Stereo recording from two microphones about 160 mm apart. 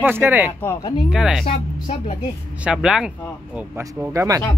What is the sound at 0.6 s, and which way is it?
Speech, 15° left (ahead or behind).